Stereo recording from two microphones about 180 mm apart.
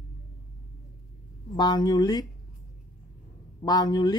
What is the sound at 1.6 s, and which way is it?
Speech, 20° left (ahead or behind).